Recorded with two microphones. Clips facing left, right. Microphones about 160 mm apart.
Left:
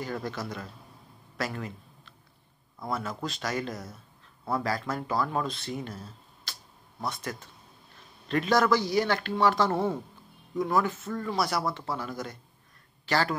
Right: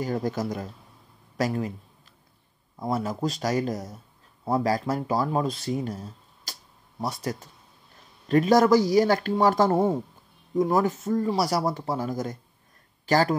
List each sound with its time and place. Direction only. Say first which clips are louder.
0.0 s speech: right 7 dB; 40° right (ahead or behind)